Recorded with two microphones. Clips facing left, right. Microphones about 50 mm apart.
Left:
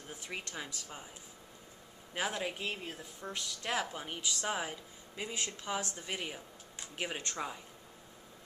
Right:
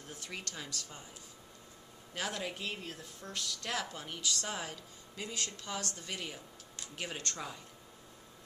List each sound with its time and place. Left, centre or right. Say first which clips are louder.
0.1 s speech: left 2 dB; centre
2.1 s speech: left 2 dB; centre